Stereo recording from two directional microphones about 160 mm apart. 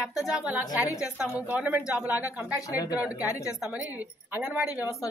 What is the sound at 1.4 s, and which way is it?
A woman's voice, 10° right (ahead or behind).